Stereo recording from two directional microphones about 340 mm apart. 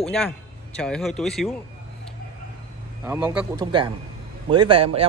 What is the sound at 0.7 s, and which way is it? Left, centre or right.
Speech, centre.